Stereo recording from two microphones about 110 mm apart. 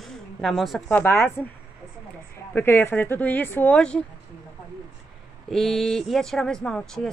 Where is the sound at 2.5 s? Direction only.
20° left (ahead or behind).